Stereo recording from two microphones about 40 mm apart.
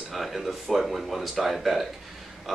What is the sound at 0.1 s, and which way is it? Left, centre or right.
Speech, centre.